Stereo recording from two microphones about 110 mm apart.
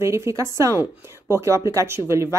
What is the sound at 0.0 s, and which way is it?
Speech, 25° right (ahead or behind).